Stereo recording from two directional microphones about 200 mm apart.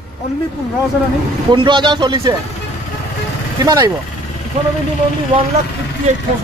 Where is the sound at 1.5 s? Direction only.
25° right (ahead or behind).